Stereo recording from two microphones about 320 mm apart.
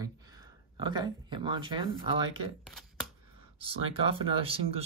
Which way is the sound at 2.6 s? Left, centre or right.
Centre.